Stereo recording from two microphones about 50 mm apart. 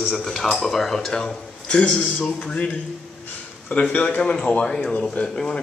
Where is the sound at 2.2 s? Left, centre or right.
Left.